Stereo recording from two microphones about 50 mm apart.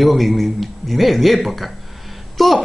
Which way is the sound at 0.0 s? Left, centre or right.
Centre.